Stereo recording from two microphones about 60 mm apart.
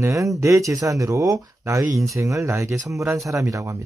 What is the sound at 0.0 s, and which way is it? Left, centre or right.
Speech, right.